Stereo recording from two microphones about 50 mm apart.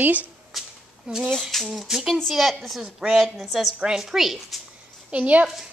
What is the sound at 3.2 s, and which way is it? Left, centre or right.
Speech, centre.